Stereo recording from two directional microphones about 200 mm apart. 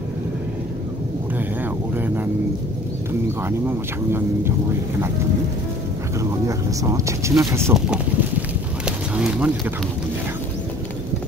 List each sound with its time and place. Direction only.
3.4 s speech: 10° right (ahead or behind)
6.4 s speech: 15° right (ahead or behind)
7.7 s a sound: 5° right (ahead or behind)